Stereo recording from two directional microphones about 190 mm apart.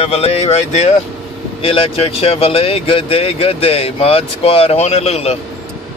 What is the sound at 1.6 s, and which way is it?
Speech, 30° left (ahead or behind).